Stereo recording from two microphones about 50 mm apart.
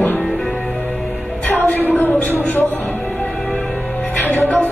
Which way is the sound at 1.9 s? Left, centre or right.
Left.